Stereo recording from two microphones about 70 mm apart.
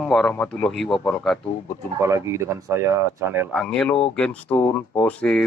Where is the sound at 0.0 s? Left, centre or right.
Centre.